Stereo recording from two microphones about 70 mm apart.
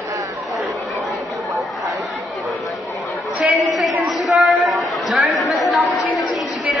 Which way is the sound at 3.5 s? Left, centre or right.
Centre.